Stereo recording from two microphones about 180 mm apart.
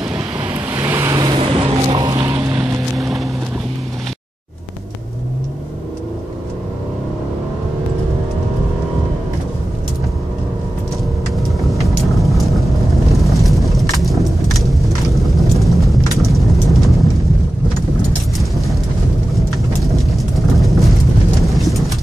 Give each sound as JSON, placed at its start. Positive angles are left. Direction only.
{"t": 0.1, "sound": "vehicle", "side_deg": -10}
{"t": 11.3, "sound": "vehicle", "side_deg": 0}
{"t": 13.1, "sound": "a sound", "side_deg": 0}
{"t": 14.7, "sound": "vehicle", "side_deg": 0}
{"t": 18.4, "sound": "vehicle", "side_deg": 0}
{"t": 19.9, "sound": "a sound", "side_deg": 0}